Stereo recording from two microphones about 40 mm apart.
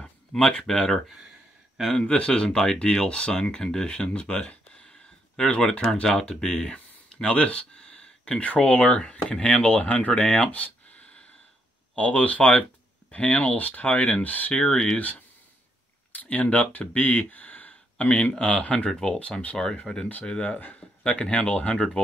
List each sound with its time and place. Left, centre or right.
0.3 s speech: centre
2.0 s speech: left
5.6 s speech: centre
9.7 s speech: left
10.5 s a sound: left
12.0 s speech: left
14.5 s speech: left
15.0 s speech: left
19.5 s speech: centre
20.5 s speech: left
21.0 s speech: left